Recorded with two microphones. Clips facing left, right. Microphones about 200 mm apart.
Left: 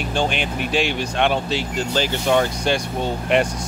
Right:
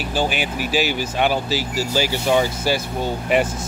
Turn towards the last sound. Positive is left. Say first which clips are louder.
# even
turn(degrees=-5)  # may be behind; listen again after turning